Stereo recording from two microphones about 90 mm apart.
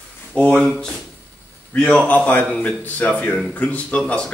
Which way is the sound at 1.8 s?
10° left (ahead or behind).